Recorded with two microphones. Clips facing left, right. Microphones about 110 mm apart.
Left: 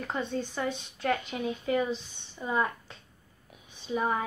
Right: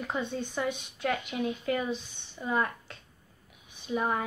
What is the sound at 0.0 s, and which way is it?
Speech, 5° right (ahead or behind).